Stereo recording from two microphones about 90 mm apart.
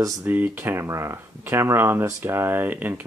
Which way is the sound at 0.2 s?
25° right (ahead or behind).